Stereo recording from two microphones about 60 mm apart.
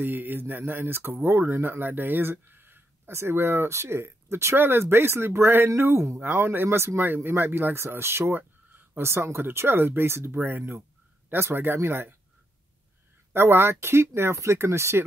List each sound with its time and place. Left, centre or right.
0.0 s speech: right
6.1 s speech: right
13.3 s speech: right